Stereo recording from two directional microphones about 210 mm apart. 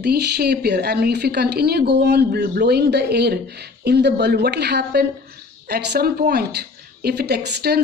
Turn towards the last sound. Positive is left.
turn(degrees=-50)  # may be behind; listen again after turning